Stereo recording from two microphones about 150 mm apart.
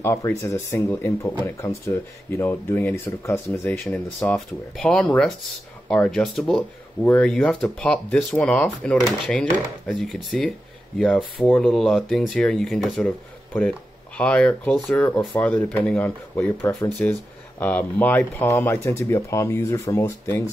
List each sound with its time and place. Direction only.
0.0 s speech: 20° left (ahead or behind)
3.8 s speech: 5° left (ahead or behind)
13.0 s speech: 10° left (ahead or behind)